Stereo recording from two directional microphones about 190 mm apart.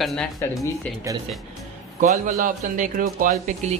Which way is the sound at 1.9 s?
40° right (ahead or behind).